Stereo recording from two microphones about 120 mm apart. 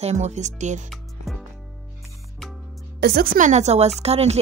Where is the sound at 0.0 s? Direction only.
70° right (ahead or behind).